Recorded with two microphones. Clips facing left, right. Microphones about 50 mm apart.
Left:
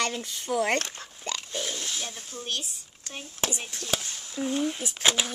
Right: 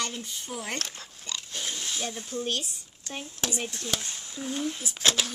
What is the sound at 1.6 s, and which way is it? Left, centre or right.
Oink, centre.